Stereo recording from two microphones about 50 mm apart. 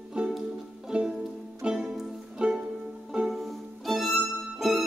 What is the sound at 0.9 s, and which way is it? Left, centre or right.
Music, right.